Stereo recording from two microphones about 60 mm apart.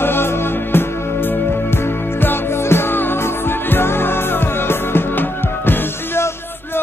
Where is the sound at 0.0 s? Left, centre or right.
Left.